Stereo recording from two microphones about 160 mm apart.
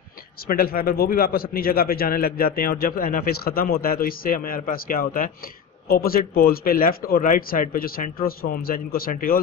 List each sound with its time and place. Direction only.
0.5 s a man's voice: 65° left (ahead or behind)